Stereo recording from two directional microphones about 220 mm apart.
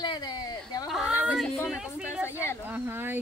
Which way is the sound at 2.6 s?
10° right (ahead or behind).